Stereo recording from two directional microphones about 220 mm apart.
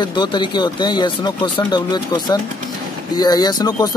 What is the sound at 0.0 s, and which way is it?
Speech, 20° left (ahead or behind).